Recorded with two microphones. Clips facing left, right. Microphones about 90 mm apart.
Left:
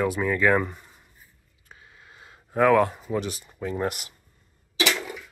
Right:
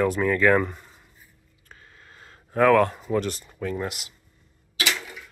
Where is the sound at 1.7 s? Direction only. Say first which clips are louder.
Even; 10° left (ahead or behind).